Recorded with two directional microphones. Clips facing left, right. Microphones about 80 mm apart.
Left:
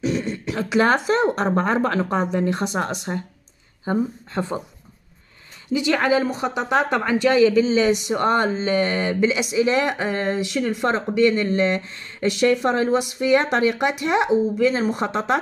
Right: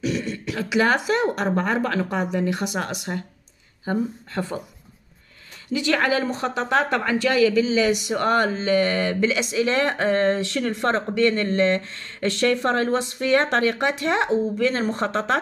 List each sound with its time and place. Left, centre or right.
0.0 s speech: left
5.7 s speech: left